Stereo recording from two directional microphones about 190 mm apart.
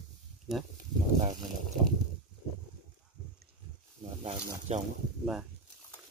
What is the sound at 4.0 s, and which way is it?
Speech, 30° right (ahead or behind).